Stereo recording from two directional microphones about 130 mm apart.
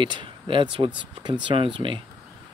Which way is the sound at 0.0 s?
40° right (ahead or behind).